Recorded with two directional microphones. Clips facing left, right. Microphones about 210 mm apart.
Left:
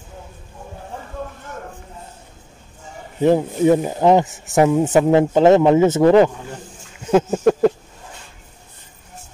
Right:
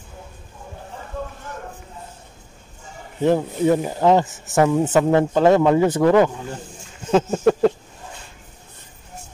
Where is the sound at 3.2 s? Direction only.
15° left (ahead or behind).